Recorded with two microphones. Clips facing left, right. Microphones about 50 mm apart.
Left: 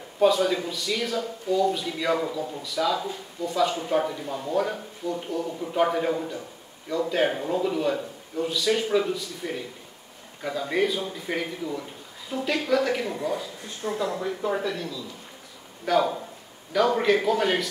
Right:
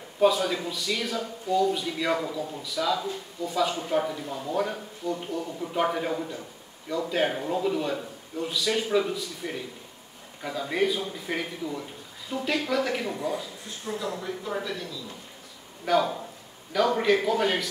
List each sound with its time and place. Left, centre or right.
0.2 s speech: centre
13.8 s speech: left
14.5 s speech: centre